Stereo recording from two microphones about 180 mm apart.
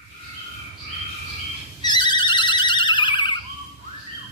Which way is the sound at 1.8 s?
25° left (ahead or behind).